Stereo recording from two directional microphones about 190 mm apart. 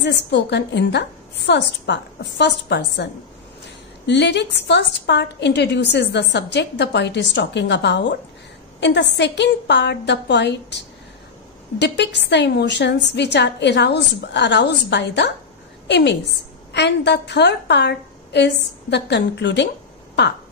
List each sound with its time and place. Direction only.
0.0 s a woman's voice: 65° left (ahead or behind)